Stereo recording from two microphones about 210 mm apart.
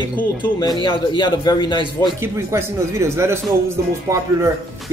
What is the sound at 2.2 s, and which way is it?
Speech, 10° right (ahead or behind).